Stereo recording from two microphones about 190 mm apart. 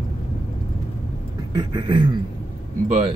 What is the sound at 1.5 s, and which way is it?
Beatboxing, 25° right (ahead or behind).